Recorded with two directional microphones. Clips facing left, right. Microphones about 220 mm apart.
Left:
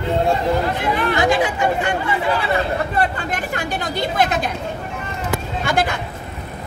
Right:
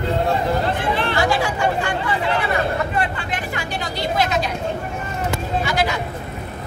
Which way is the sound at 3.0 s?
40° left (ahead or behind).